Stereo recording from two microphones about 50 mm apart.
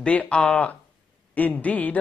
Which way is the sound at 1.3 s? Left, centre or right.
Left.